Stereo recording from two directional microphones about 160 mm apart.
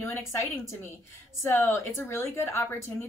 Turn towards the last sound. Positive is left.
turn(degrees=15)  # may be behind; listen again after turning